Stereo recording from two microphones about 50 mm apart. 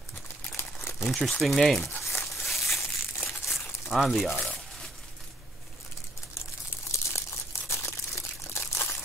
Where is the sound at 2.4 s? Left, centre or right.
Centre.